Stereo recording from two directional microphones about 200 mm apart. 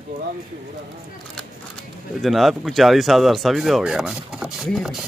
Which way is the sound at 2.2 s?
Centre (ahead or behind).